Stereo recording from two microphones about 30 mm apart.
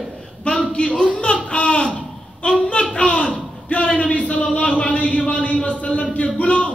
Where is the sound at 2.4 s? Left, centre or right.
Left.